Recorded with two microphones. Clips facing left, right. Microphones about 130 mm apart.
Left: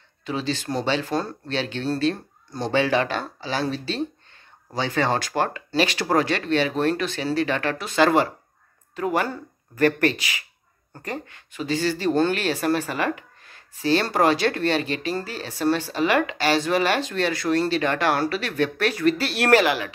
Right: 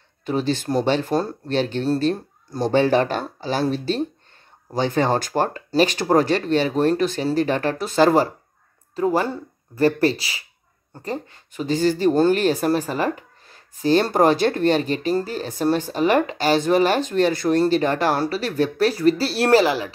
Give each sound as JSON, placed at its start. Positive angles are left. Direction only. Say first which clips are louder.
{"t": 0.2, "sound": "speech", "louder": "right 5 dB", "side_deg": -50}
{"t": 2.1, "sound": "speech", "louder": "right 5 dB", "side_deg": -5}
{"t": 2.7, "sound": "speech", "louder": "right 3 dB", "side_deg": -45}